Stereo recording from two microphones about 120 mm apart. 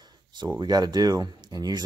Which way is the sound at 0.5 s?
35° right (ahead or behind).